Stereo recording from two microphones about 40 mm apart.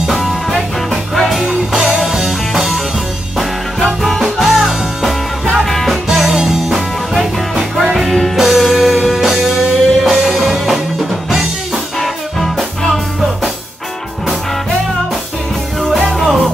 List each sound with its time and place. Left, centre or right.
0.1 s music: centre
1.4 s music: centre
6.0 s music: centre
11.2 s drum kit: centre
12.9 s music: centre
15.9 s music: centre